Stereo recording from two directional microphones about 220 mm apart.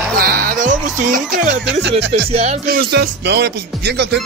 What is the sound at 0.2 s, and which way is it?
Music, 45° right (ahead or behind).